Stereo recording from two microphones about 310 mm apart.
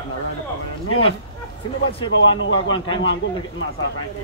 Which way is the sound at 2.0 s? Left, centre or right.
Centre.